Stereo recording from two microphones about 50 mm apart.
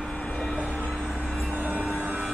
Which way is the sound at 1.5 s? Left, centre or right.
Right.